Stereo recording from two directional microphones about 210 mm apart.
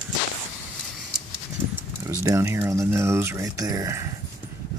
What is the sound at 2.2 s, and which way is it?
Speech, 15° right (ahead or behind).